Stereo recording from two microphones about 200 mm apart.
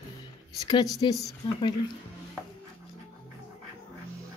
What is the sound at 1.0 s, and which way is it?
Speech, 25° left (ahead or behind).